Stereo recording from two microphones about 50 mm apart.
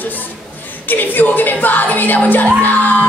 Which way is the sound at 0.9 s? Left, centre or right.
Left.